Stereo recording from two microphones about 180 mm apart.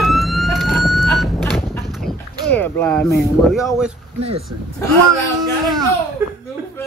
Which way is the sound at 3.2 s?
Centre (ahead or behind).